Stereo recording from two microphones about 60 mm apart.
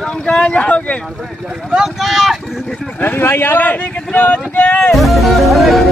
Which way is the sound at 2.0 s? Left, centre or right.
Centre.